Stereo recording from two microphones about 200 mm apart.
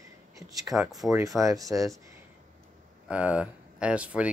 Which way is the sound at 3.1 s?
5° right (ahead or behind).